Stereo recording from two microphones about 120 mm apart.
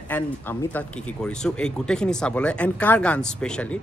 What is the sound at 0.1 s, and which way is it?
Speech, 10° left (ahead or behind).